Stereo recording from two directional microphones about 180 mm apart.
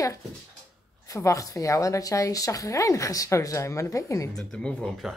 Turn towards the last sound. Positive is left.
turn(degrees=5)  # may be behind; listen again after turning